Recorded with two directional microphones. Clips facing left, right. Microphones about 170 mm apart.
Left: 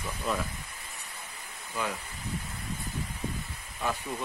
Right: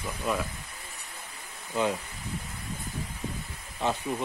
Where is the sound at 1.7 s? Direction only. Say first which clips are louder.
Right 6 dB; 25° right (ahead or behind).